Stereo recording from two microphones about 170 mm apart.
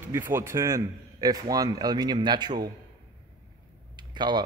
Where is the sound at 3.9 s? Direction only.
25° right (ahead or behind).